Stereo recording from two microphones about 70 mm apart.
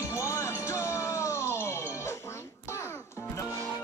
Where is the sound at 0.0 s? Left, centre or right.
Left.